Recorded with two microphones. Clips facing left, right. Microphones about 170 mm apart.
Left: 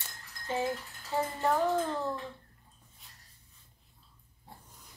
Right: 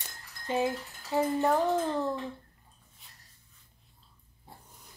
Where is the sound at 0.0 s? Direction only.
15° right (ahead or behind).